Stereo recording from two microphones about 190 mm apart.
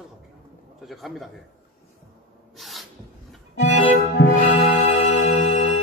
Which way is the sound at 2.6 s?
Centre (ahead or behind).